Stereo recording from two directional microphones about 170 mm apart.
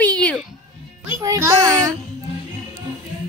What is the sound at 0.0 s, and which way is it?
Music, 5° left (ahead or behind).